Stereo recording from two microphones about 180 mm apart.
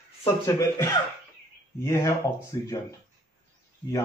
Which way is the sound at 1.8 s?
15° left (ahead or behind).